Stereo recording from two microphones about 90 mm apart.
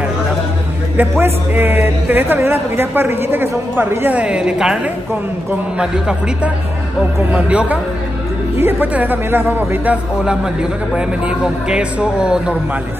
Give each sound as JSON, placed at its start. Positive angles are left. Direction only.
{"t": 0.9, "sound": "a man's voice", "side_deg": -20}
{"t": 5.8, "sound": "a man's voice", "side_deg": -10}
{"t": 10.1, "sound": "speech", "side_deg": -10}